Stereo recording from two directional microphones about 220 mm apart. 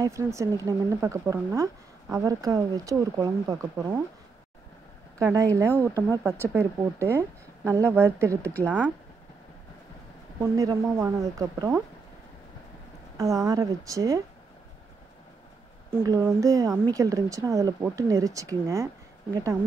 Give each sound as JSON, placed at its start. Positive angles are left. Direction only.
{"t": 0.0, "sound": "speech", "side_deg": -15}
{"t": 5.2, "sound": "speech", "side_deg": -15}
{"t": 8.4, "sound": "a woman's voice", "side_deg": 5}
{"t": 10.4, "sound": "speech", "side_deg": -15}
{"t": 13.2, "sound": "speech", "side_deg": -15}
{"t": 15.9, "sound": "speech", "side_deg": -10}